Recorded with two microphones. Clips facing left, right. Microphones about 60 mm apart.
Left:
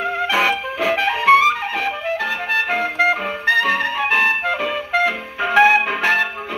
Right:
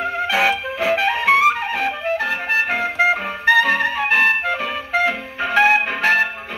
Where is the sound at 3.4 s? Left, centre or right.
Centre.